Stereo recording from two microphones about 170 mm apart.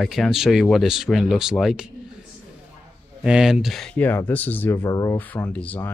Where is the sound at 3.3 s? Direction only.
5° right (ahead or behind).